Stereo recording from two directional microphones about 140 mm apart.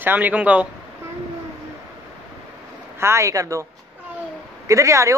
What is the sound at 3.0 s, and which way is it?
Speech, 20° right (ahead or behind).